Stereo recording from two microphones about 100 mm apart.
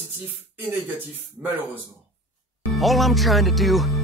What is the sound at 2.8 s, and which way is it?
Speech, centre (ahead or behind).